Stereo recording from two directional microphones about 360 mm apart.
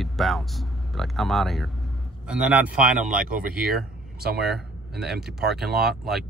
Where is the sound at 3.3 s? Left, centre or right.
Right.